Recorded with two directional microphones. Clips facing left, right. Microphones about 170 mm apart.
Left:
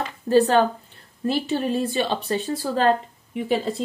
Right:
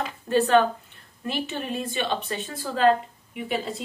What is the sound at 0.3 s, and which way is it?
Speech, 35° left (ahead or behind).